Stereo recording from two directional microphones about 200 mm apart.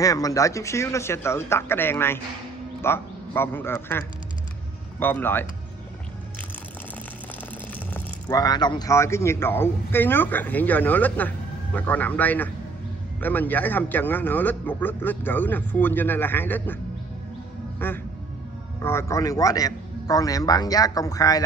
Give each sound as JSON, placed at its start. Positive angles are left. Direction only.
{"t": 0.0, "sound": "speech", "side_deg": 15}
{"t": 5.0, "sound": "speech", "side_deg": 10}
{"t": 7.9, "sound": "speech", "side_deg": 15}
{"t": 17.8, "sound": "speech", "side_deg": 10}